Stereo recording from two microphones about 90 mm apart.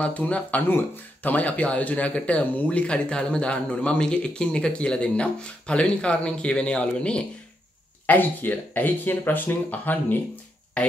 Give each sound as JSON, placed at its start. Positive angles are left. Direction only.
{"t": 0.0, "sound": "speech", "side_deg": 15}